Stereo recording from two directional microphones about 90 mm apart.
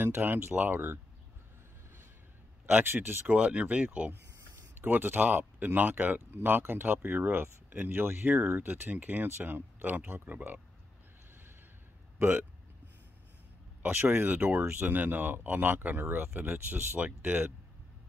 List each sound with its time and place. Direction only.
0.0 s speech: 25° right (ahead or behind)
2.6 s speech: 25° right (ahead or behind)
12.2 s speech: 20° right (ahead or behind)
13.8 s speech: 20° right (ahead or behind)